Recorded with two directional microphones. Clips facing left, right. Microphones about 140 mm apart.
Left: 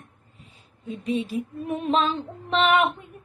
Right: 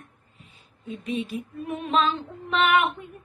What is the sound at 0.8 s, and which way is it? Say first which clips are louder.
Female singing: left 3 dB; 30° left (ahead or behind).